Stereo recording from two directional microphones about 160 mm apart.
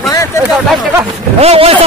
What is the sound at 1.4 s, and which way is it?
Speech, 40° right (ahead or behind).